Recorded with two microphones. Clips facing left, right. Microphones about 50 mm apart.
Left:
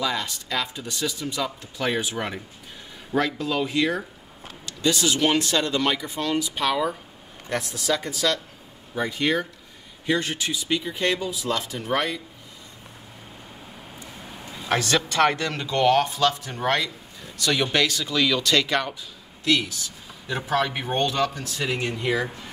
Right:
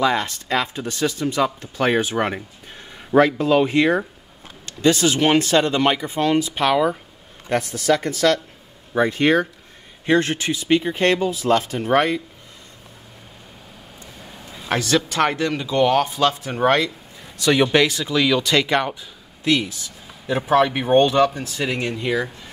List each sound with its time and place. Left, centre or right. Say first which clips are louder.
0.0 s speech: right 7 dB; right
3.2 s speech: right 9 dB; right
8.0 s speech: right 7 dB; right
14.2 s a sound: right 1 dB; centre
15.1 s speech: right 1 dB; centre
16.2 s speech: right 4 dB; right